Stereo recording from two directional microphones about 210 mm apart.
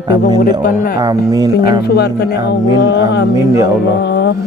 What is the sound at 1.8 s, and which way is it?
Mantra, 50° left (ahead or behind).